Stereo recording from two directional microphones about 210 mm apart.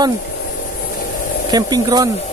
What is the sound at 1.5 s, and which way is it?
Speech, 20° right (ahead or behind).